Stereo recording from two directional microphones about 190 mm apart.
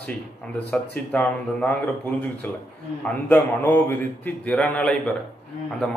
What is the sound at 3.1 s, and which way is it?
Speech, 10° left (ahead or behind).